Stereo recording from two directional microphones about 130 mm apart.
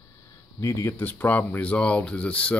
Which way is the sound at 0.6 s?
25° left (ahead or behind).